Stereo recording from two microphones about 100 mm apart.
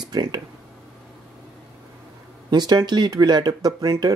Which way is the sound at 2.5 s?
45° right (ahead or behind).